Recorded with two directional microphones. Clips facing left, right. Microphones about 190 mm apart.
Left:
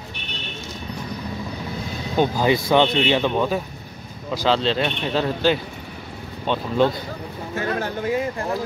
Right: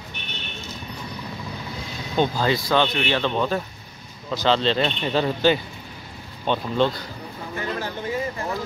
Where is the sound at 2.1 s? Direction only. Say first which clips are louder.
Left 2 dB; 15° left (ahead or behind).